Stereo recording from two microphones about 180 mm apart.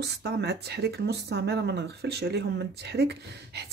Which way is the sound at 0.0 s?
65° right (ahead or behind).